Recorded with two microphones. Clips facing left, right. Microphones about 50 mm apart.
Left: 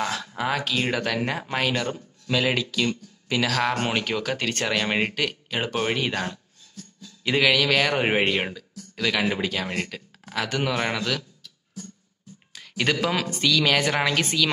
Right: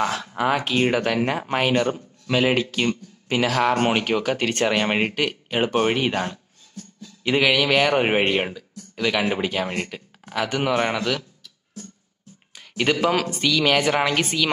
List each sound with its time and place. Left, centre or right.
0.0 s a man's voice: centre
12.5 s a man's voice: centre